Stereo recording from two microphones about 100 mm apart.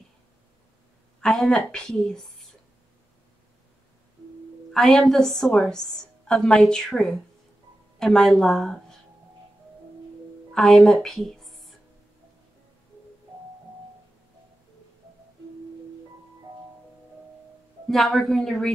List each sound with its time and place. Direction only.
1.2 s a woman's voice: 5° left (ahead or behind)
4.7 s a woman's voice: 5° left (ahead or behind)
10.5 s a woman's voice: 5° left (ahead or behind)
17.8 s a woman's voice: centre (ahead or behind)